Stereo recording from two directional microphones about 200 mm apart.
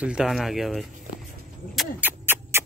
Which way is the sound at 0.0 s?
5° right (ahead or behind).